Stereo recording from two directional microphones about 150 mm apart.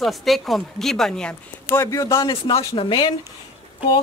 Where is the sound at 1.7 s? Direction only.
20° left (ahead or behind).